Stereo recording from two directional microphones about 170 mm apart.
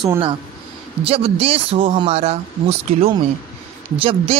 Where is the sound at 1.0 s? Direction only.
35° right (ahead or behind).